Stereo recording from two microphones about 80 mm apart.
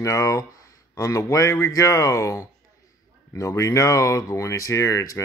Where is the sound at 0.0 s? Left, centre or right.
Left.